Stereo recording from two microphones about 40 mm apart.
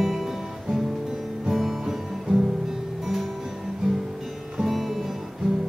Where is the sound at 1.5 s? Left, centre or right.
Centre.